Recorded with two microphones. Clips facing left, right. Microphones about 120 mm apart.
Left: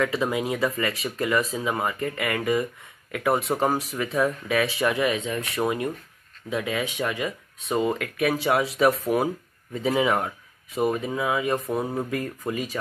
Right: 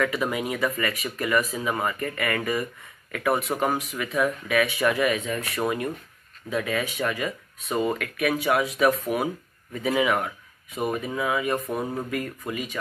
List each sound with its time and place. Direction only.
0.0 s speech: 25° left (ahead or behind)
11.8 s speech: 10° left (ahead or behind)
12.1 s speech: 30° left (ahead or behind)